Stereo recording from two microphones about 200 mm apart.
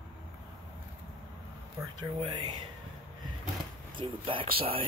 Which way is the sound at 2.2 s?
20° right (ahead or behind).